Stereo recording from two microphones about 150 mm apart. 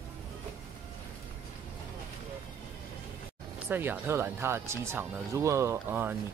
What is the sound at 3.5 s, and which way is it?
Speech, 15° right (ahead or behind).